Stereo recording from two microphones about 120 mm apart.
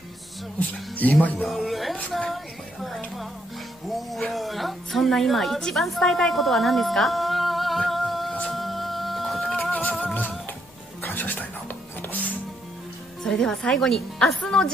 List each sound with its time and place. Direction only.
0.6 s speech: 15° left (ahead or behind)
1.5 s a woman's voice: centre (ahead or behind)
3.9 s music: centre (ahead or behind)
11.0 s music: 15° left (ahead or behind)
13.2 s a woman's voice: 5° left (ahead or behind)